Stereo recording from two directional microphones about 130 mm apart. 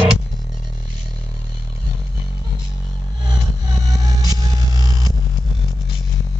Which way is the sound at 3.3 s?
30° right (ahead or behind).